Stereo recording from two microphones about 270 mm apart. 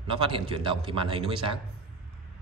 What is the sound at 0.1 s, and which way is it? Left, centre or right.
Speech, centre.